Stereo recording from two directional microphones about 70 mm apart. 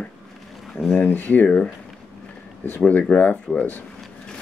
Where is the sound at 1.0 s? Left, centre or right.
Left.